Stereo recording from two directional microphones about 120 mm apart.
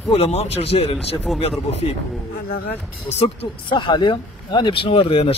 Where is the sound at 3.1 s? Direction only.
55° left (ahead or behind).